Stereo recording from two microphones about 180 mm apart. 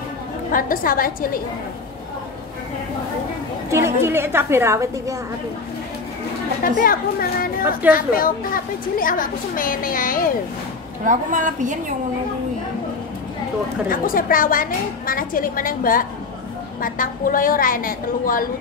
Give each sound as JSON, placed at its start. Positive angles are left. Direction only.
{"t": 0.5, "sound": "a woman's voice", "side_deg": 50}
{"t": 3.7, "sound": "a woman's voice", "side_deg": -15}
{"t": 6.8, "sound": "a woman's voice", "side_deg": 55}
{"t": 11.1, "sound": "a woman's voice", "side_deg": -45}
{"t": 13.8, "sound": "a woman's voice", "side_deg": 50}